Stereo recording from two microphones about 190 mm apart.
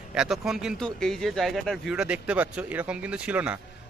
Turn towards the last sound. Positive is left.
turn(degrees=-5)  # may be behind; listen again after turning